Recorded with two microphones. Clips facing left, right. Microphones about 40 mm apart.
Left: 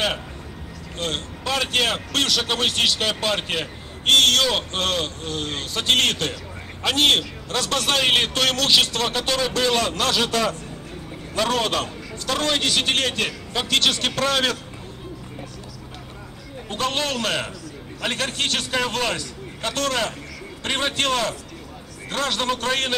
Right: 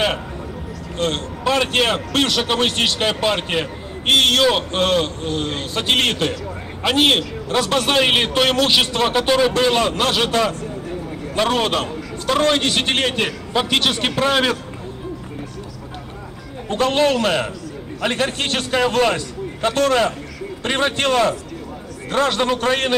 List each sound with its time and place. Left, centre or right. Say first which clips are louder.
0.9 s a man's voice: right 6 dB; centre
16.7 s a man's voice: right 8 dB; centre